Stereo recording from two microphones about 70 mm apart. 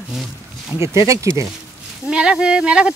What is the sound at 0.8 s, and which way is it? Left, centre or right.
Speech, right.